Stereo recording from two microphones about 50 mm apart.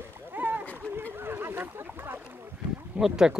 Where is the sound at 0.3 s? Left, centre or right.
Right.